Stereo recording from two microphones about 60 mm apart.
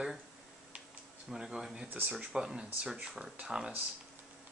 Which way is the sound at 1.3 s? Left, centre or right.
Centre.